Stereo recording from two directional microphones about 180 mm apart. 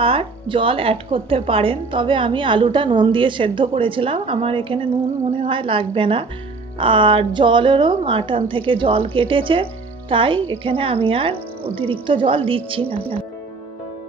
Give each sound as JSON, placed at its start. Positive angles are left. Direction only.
{"t": 0.0, "sound": "speech", "side_deg": -30}